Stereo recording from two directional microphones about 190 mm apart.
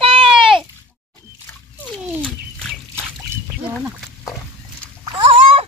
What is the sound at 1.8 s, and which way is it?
Fowl, 5° left (ahead or behind).